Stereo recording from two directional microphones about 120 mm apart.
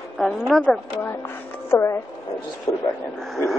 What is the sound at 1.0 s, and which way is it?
A woman's voice, 20° left (ahead or behind).